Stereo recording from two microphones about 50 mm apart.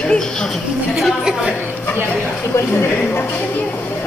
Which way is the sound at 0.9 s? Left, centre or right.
Centre.